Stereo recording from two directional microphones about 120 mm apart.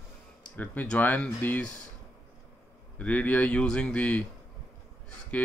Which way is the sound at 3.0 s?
15° left (ahead or behind).